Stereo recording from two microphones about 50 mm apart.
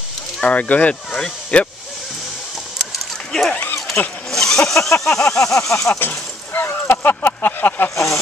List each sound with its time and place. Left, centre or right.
0.4 s speech: left
2.9 s a sound: centre
4.3 s speech: centre
5.0 s a sound: centre
5.7 s speech: left
5.9 s speech: left
7.9 s speech: left